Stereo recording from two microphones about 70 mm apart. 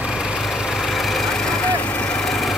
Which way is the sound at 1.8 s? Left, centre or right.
Left.